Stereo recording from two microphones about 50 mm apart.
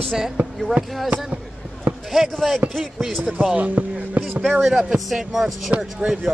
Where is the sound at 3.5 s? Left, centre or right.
Right.